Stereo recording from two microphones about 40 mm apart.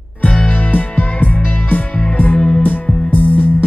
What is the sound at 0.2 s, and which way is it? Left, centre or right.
Music, left.